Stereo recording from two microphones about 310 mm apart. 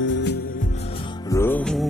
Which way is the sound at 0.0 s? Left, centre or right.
Left.